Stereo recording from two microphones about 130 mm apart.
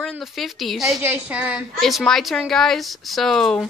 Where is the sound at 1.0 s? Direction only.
15° right (ahead or behind).